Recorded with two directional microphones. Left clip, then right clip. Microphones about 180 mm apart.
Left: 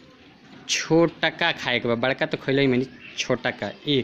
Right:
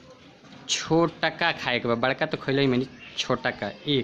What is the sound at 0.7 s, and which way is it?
Speech, 10° left (ahead or behind).